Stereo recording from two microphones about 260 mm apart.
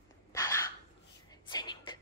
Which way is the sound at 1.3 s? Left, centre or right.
Centre.